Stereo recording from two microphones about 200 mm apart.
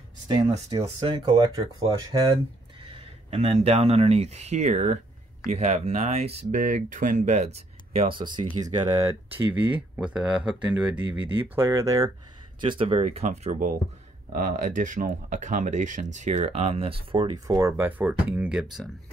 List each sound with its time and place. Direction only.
0.3 s speech: 25° right (ahead or behind)
2.9 s speech: 30° right (ahead or behind); by 10.8 s 5° right (ahead or behind)
11.0 s speech: 25° right (ahead or behind)
11.5 s speech: 15° right (ahead or behind)
12.5 s speech: 25° right (ahead or behind); by 18.9 s 5° right (ahead or behind)